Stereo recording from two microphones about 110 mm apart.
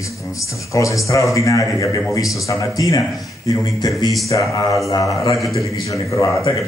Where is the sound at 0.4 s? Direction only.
30° left (ahead or behind).